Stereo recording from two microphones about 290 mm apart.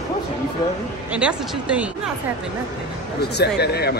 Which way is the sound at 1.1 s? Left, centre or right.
Centre.